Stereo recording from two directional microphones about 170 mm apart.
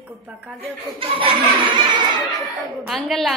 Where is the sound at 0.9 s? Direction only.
30° right (ahead or behind).